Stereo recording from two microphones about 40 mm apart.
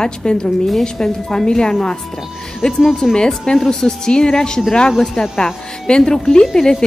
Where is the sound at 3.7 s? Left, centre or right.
Centre.